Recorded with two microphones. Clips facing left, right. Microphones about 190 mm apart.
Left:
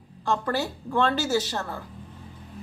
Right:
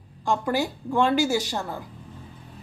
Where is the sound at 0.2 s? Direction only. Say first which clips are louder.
Right 2 dB; 10° right (ahead or behind).